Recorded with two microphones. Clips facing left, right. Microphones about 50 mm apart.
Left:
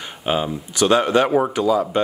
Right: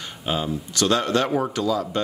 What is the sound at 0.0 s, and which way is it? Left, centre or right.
Speech, left.